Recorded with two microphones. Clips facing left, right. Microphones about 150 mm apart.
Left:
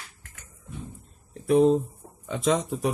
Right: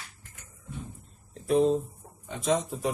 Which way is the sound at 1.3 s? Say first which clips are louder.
Left 4 dB; 60° left (ahead or behind).